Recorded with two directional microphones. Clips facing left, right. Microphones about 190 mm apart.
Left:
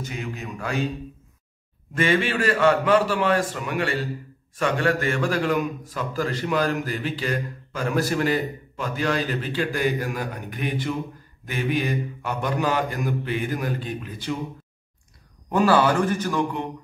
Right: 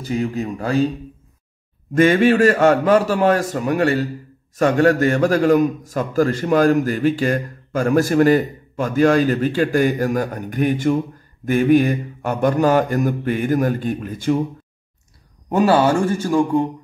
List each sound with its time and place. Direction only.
0.0 s speech: 35° right (ahead or behind)
2.0 s a man's voice: 45° right (ahead or behind)
15.5 s a man's voice: 25° right (ahead or behind)